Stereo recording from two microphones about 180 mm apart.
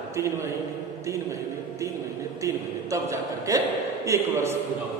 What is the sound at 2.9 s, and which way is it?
Music, 15° right (ahead or behind).